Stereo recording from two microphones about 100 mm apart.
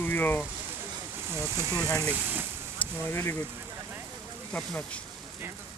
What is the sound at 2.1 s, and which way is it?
Speech, 15° right (ahead or behind).